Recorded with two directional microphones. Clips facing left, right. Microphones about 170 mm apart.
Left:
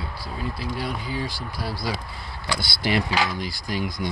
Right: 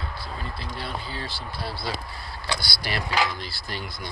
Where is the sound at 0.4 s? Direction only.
10° left (ahead or behind).